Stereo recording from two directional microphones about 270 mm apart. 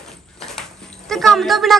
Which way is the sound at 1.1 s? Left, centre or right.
Centre.